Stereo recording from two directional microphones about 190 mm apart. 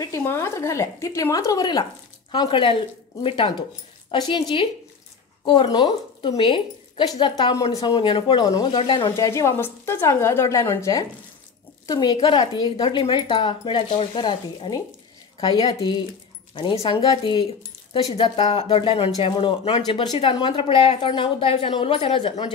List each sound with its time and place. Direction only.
0.0 s a woman's voice: 15° left (ahead or behind)